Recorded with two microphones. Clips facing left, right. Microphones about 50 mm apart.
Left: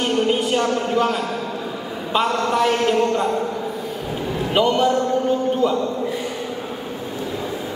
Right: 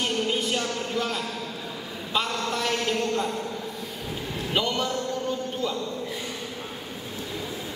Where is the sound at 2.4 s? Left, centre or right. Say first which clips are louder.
Left 9 dB; centre.